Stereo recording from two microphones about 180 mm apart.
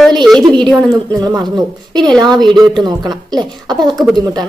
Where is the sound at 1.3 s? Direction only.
20° right (ahead or behind).